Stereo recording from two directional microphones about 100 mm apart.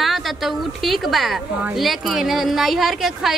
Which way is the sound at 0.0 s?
Centre (ahead or behind).